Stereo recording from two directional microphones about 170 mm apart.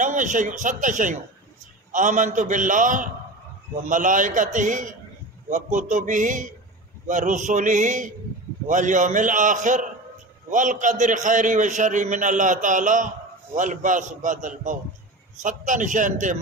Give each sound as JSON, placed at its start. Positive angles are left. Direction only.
{"t": 0.0, "sound": "a man's voice", "side_deg": -50}